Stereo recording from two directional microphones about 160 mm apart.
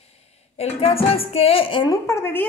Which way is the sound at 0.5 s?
40° left (ahead or behind).